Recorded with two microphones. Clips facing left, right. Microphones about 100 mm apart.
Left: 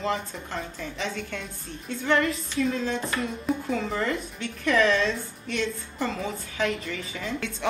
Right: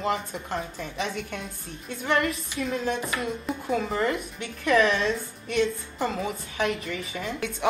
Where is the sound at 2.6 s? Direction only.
30° right (ahead or behind).